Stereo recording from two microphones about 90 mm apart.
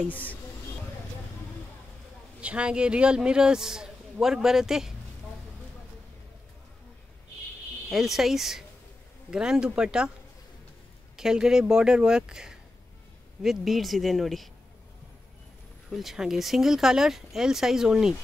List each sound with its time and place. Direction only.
0.1 s speech: 20° left (ahead or behind)
2.4 s a man's voice: 10° right (ahead or behind)
7.9 s a man's voice: 5° right (ahead or behind)
11.1 s a man's voice: 5° right (ahead or behind)
15.9 s speech: 5° right (ahead or behind)